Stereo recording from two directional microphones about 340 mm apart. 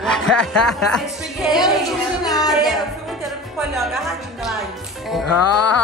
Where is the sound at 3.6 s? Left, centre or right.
Centre.